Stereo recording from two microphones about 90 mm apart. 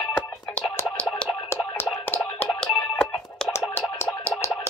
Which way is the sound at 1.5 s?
25° left (ahead or behind).